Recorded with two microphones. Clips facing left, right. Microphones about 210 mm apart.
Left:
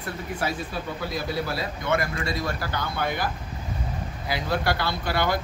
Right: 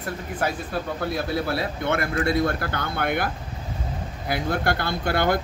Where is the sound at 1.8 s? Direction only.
60° right (ahead or behind).